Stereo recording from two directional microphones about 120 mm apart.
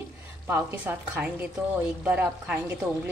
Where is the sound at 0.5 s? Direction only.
20° right (ahead or behind).